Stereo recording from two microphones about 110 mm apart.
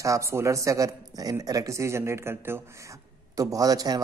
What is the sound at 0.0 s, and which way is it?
Speech, 30° right (ahead or behind).